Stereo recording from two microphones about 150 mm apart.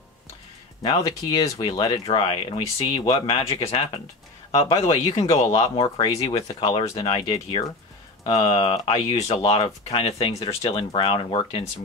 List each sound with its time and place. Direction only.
0.8 s speech: 25° left (ahead or behind)